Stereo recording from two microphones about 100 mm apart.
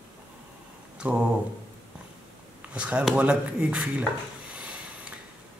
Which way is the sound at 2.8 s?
10° right (ahead or behind).